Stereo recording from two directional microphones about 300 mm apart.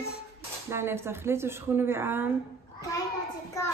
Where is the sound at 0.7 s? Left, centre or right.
Centre.